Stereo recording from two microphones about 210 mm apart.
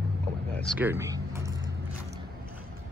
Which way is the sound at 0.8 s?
10° right (ahead or behind).